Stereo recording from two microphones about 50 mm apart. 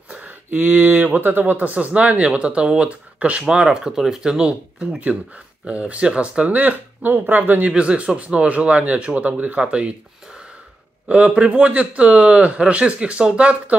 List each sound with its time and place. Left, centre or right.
0.1 s speech: right; by 3.9 s centre
3.9 s speech: centre
4.2 s speech: centre; by 7.7 s right
7.7 s speech: right
11.1 s speech: right